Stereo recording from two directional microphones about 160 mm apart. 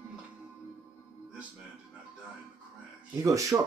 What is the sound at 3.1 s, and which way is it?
Speech, 20° right (ahead or behind).